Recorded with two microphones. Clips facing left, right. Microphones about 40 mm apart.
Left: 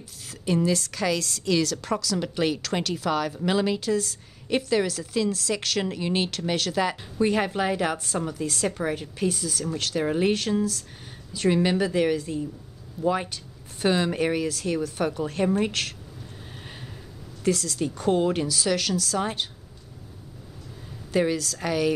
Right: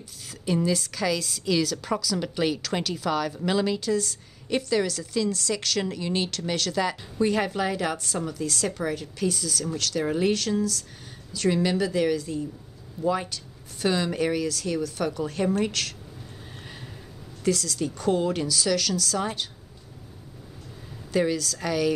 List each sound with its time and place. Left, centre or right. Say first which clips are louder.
0.5 s a woman's voice: left 1 dB; centre
17.5 s a woman's voice: left 1 dB; centre
21.1 s a woman's voice: left 1 dB; centre